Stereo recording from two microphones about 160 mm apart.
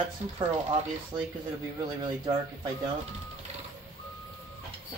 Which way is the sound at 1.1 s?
30° right (ahead or behind).